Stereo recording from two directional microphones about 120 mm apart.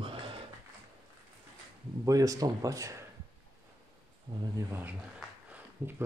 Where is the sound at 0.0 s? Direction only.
45° right (ahead or behind).